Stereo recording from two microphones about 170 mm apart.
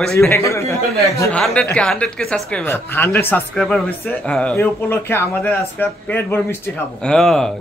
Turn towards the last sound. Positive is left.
turn(degrees=0)  # may be behind; listen again after turning